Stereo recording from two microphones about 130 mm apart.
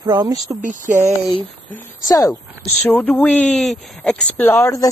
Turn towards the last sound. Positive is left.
turn(degrees=25)  # may be behind; listen again after turning